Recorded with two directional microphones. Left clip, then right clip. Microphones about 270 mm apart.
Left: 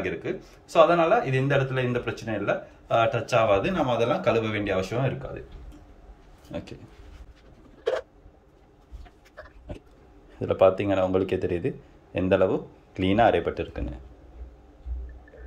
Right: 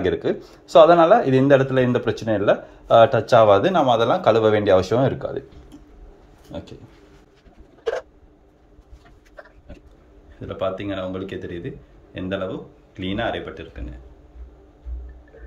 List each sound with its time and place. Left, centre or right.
0.0 s speech: right
6.5 s speech: centre
10.4 s speech: centre